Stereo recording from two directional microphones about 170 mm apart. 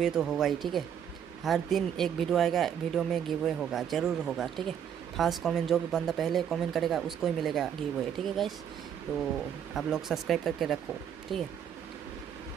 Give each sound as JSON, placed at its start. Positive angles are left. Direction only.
{"t": 0.0, "sound": "speech", "side_deg": 0}
{"t": 9.8, "sound": "speech", "side_deg": 0}